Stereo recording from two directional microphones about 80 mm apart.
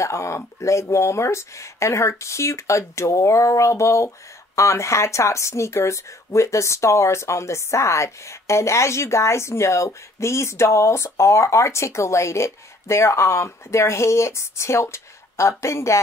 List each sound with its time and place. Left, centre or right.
0.0 s speech: left